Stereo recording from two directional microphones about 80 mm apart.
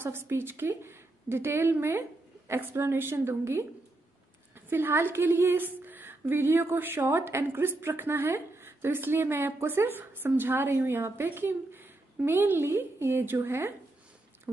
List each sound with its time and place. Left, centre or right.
0.0 s a woman's voice: right